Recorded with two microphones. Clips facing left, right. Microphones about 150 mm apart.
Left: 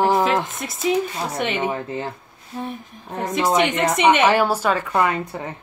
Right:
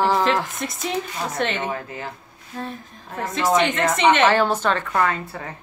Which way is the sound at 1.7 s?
25° left (ahead or behind).